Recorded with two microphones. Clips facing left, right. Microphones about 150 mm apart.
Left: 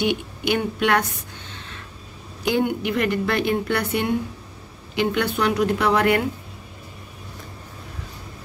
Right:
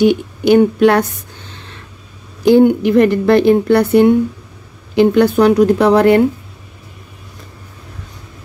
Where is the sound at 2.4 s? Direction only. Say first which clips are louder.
Right 13 dB; 35° right (ahead or behind).